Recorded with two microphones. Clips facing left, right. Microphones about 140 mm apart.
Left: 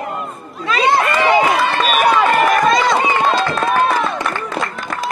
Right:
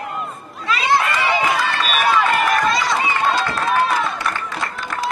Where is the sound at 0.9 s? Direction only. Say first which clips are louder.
Left 4 dB; 45° left (ahead or behind).